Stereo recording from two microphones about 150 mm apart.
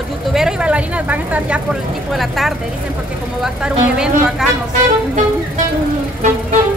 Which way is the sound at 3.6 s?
5° right (ahead or behind).